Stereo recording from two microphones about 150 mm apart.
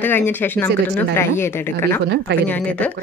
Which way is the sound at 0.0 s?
15° left (ahead or behind).